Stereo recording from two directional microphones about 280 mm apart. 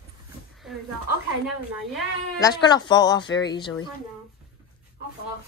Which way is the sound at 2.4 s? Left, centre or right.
Centre.